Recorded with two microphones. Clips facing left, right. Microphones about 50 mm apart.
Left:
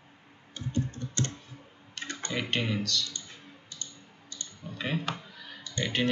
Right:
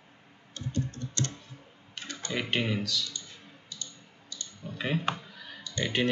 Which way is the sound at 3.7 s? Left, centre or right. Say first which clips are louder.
Right 2 dB; left.